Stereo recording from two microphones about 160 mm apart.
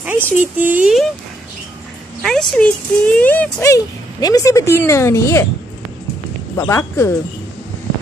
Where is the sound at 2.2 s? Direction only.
5° left (ahead or behind); by 5.4 s 20° left (ahead or behind).